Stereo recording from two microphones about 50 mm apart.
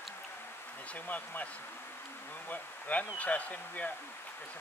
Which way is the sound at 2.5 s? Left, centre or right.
Left.